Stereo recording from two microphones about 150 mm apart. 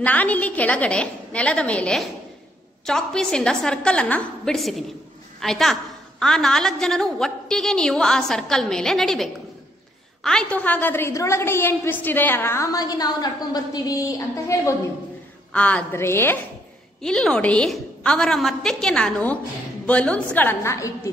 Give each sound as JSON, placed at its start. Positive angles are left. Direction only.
{"t": 0.0, "sound": "a woman's voice", "side_deg": 10}
{"t": 15.5, "sound": "a woman's voice", "side_deg": 10}
{"t": 17.0, "sound": "a woman's voice", "side_deg": 5}